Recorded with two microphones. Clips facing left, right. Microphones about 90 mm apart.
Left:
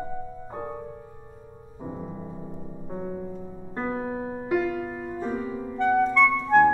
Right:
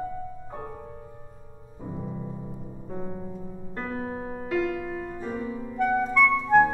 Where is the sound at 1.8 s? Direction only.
25° left (ahead or behind).